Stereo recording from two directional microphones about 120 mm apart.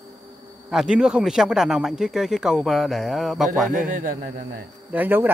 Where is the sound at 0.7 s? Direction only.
5° right (ahead or behind).